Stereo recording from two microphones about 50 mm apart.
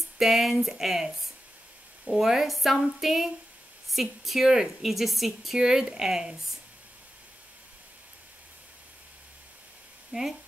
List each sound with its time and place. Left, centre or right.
0.2 s a woman's voice: centre
5.6 s speech: centre
10.1 s speech: right